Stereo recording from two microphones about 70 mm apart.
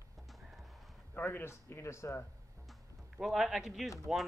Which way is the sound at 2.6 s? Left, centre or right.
Centre.